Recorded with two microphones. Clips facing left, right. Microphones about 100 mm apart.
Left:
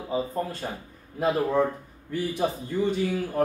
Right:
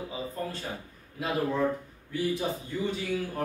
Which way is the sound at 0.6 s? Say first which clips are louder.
Left 3 dB; 35° left (ahead or behind).